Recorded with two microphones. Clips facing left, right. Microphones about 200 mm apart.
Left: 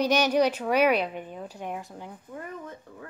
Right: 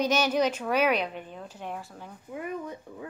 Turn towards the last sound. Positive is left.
turn(degrees=-15)  # may be behind; listen again after turning